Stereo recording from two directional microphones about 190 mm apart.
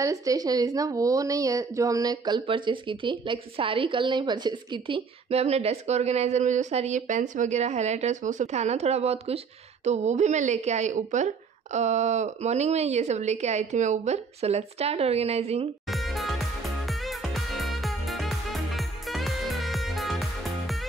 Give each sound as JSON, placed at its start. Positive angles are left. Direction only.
{"t": 0.0, "sound": "a woman's voice", "side_deg": -15}
{"t": 15.9, "sound": "music", "side_deg": 0}